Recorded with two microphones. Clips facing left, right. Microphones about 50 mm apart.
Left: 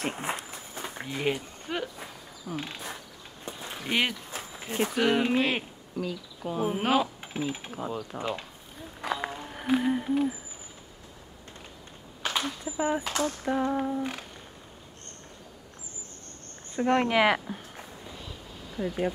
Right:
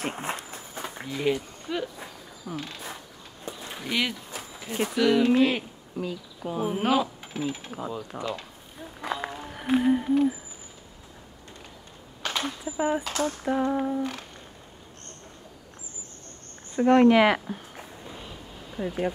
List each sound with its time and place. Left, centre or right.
0.2 s speech: centre
1.0 s speech: left
3.9 s a sound: left
4.8 s speech: left
5.3 s speech: centre
7.0 s a sound: centre
7.7 s speech: centre
9.0 s run: centre
9.5 s a sound: centre
12.2 s a sound: centre
12.6 s speech: centre
16.7 s speech: centre